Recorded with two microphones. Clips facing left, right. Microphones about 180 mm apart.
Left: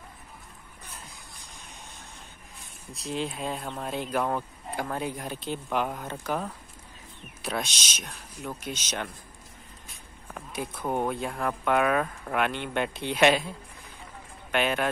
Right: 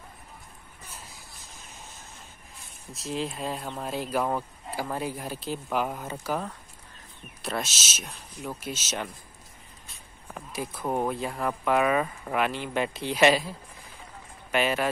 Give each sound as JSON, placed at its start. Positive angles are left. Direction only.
{"t": 0.8, "sound": "a sound", "side_deg": -5}
{"t": 7.4, "sound": "speech", "side_deg": 0}
{"t": 10.3, "sound": "speech", "side_deg": -5}